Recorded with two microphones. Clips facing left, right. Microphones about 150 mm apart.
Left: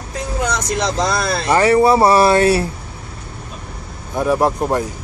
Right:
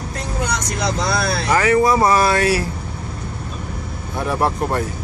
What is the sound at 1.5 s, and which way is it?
Speech, 30° left (ahead or behind).